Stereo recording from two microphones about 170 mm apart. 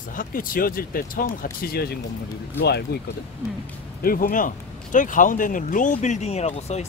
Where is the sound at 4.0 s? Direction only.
60° left (ahead or behind).